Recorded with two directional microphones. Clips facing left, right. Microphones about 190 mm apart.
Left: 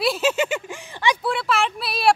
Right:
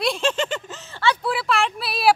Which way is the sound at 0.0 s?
5° left (ahead or behind).